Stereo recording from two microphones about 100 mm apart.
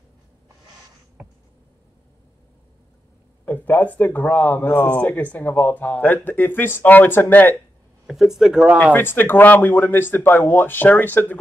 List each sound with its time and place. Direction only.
3.4 s speech: 20° left (ahead or behind)
8.1 s speech: 5° right (ahead or behind)
8.9 s speech: 20° left (ahead or behind)